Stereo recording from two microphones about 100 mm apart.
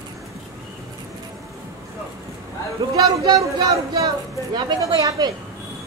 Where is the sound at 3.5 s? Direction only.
35° right (ahead or behind).